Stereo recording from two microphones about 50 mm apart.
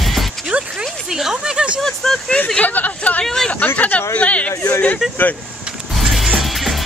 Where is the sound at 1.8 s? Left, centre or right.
Centre.